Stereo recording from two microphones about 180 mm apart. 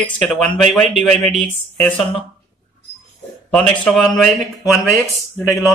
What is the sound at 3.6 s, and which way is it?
Speech, 5° left (ahead or behind).